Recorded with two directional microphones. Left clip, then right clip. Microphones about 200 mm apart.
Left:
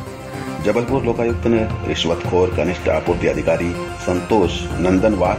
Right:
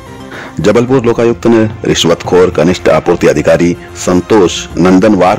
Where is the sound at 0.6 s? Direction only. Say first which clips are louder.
Right 10 dB; 65° right (ahead or behind).